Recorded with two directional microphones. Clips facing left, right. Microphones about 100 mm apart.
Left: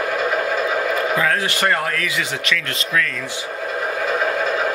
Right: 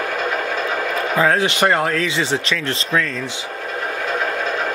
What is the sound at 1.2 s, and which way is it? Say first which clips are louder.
Speech: right 3 dB; 20° right (ahead or behind).